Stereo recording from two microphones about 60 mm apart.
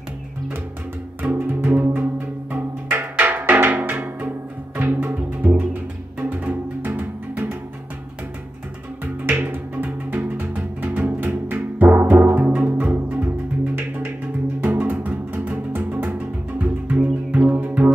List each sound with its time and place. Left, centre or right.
1.3 s music: right
9.0 s music: right